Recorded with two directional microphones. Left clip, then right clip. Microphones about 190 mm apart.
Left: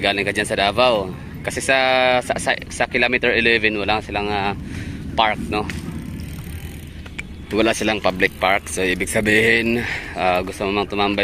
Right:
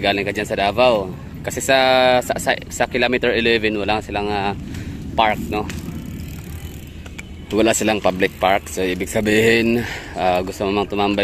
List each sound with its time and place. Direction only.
0.0 s speech: 5° right (ahead or behind)
7.5 s speech: 20° right (ahead or behind)